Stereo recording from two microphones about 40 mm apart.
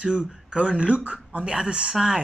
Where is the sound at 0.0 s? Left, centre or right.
Right.